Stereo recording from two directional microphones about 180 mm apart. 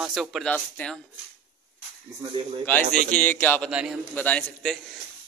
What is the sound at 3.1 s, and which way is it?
Speech, 10° left (ahead or behind).